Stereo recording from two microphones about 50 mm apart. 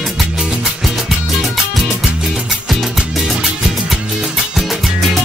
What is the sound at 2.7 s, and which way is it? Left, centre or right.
Music, centre.